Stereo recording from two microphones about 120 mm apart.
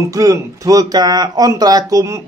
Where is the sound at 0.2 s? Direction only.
30° right (ahead or behind).